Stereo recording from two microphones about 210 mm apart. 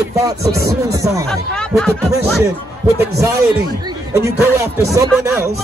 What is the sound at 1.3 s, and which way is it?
Speech, centre (ahead or behind).